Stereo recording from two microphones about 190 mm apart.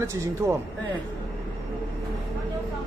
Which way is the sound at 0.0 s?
15° right (ahead or behind).